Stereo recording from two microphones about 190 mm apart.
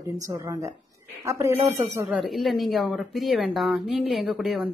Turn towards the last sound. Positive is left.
turn(degrees=0)  # may be behind; listen again after turning